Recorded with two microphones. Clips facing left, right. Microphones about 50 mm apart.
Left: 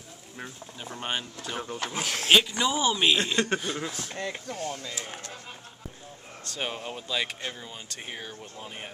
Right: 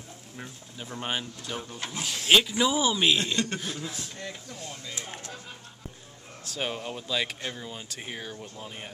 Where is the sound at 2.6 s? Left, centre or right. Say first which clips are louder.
Right 1 dB; centre.